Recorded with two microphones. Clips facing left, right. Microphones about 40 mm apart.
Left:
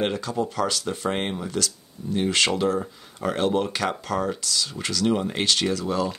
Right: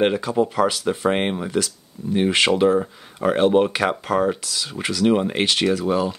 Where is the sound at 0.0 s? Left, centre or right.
Centre.